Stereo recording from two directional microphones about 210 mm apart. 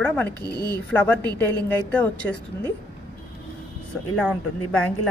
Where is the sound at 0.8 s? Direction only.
10° left (ahead or behind).